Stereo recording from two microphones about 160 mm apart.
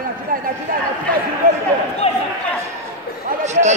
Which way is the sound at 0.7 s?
65° right (ahead or behind).